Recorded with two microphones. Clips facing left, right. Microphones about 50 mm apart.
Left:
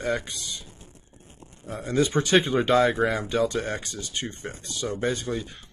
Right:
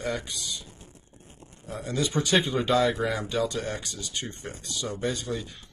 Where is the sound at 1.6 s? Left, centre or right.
Left.